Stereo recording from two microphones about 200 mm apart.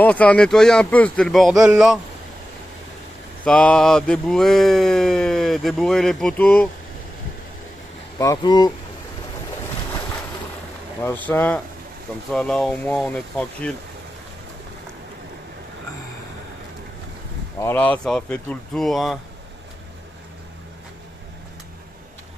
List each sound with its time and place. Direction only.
0.0 s speech: 5° left (ahead or behind)
3.4 s speech: 5° left (ahead or behind)
8.2 s speech: 20° left (ahead or behind)
11.0 s speech: 10° left (ahead or behind)
17.6 s speech: 10° left (ahead or behind)